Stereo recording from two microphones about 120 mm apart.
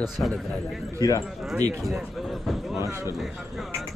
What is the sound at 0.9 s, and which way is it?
Speech, 30° left (ahead or behind).